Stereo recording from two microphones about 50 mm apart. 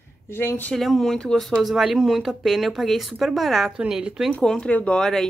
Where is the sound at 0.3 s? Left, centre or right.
Left.